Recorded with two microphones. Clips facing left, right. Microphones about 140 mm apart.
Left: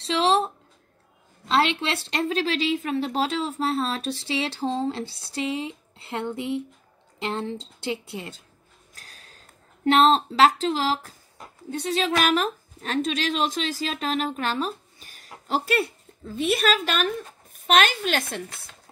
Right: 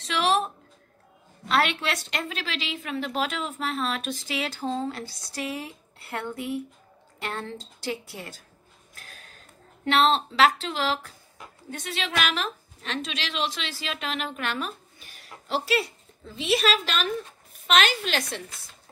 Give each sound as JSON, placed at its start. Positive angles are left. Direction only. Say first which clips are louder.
{"t": 0.0, "sound": "music", "louder": "left 3 dB", "side_deg": 25}
{"t": 1.5, "sound": "a woman's voice", "louder": "left 2 dB", "side_deg": 25}
{"t": 8.9, "sound": "a sound", "louder": "right 2 dB", "side_deg": 35}
{"t": 9.8, "sound": "a woman's voice", "louder": "left 4 dB", "side_deg": 35}